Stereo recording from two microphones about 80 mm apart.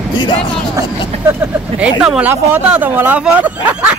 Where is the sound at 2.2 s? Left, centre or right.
Centre.